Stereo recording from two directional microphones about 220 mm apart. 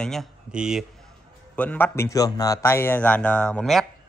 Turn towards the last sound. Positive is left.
turn(degrees=0)  # may be behind; listen again after turning